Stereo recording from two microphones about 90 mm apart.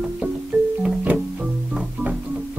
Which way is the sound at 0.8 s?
10° right (ahead or behind).